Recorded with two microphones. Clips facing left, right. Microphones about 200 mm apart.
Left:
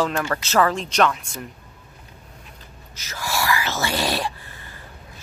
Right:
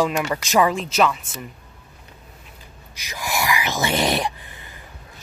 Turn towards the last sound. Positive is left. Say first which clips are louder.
# even
turn(degrees=-15)  # may be behind; listen again after turning